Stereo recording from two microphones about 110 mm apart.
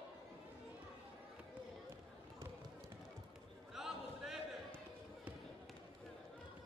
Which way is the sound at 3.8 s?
5° right (ahead or behind).